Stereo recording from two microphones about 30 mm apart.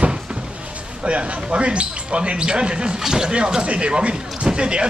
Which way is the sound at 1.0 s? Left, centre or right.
Right.